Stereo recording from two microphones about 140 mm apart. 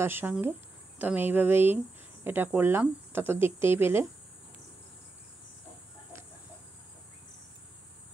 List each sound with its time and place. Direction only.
0.0 s speech: 15° right (ahead or behind)